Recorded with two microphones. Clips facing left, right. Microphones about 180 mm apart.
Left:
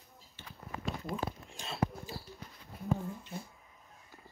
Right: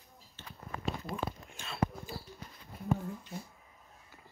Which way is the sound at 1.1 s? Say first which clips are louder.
Even; 35° left (ahead or behind).